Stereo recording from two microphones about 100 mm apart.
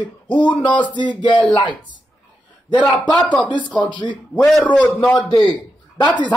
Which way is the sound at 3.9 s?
50° left (ahead or behind).